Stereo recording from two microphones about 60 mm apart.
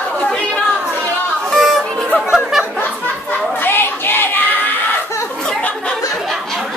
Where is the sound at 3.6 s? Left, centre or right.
Left.